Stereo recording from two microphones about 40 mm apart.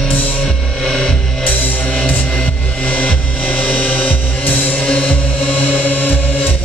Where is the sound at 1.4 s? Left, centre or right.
Left.